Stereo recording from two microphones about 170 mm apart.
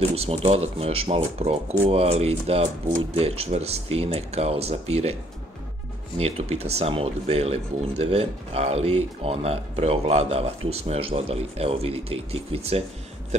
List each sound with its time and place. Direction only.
0.1 s speech: 35° right (ahead or behind)
6.1 s speech: 35° right (ahead or behind)